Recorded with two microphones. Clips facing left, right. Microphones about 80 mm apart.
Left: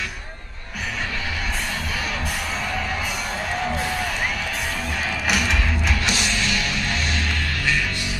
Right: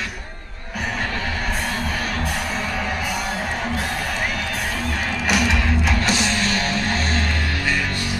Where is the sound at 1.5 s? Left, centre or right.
Right.